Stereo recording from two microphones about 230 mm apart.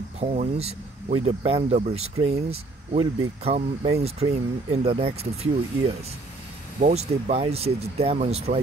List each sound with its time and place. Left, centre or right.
0.2 s speech: right
6.8 s speech: right